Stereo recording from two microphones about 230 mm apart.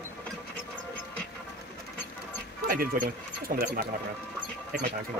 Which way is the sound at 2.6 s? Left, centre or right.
Right.